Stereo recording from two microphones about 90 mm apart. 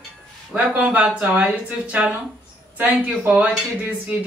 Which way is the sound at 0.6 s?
15° right (ahead or behind).